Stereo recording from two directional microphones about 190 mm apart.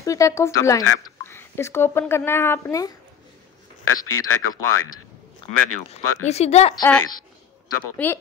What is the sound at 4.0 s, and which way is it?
Speech, 90° left.